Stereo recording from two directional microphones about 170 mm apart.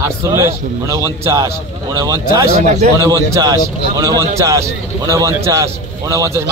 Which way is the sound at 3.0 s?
20° right (ahead or behind).